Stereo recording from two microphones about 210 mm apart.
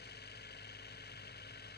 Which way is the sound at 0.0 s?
50° left (ahead or behind).